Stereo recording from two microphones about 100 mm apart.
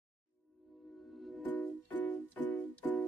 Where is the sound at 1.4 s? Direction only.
15° left (ahead or behind).